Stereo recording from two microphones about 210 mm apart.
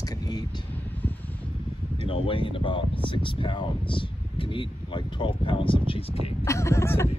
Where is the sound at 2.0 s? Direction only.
25° left (ahead or behind).